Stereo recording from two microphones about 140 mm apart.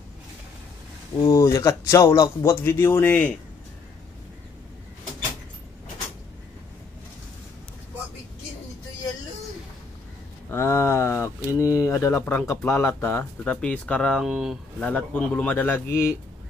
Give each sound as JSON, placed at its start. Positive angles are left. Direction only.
{"t": 1.2, "sound": "speech", "side_deg": 25}
{"t": 10.5, "sound": "speech", "side_deg": 15}
{"t": 14.8, "sound": "speech", "side_deg": 10}